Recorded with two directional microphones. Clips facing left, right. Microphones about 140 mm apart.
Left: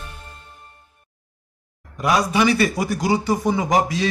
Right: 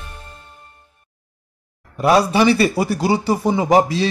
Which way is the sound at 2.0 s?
30° right (ahead or behind).